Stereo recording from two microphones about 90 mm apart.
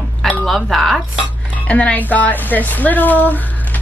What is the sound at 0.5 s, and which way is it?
Speech, centre (ahead or behind).